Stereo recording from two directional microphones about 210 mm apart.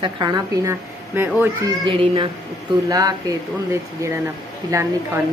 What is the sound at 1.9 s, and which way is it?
Child singing, 25° right (ahead or behind).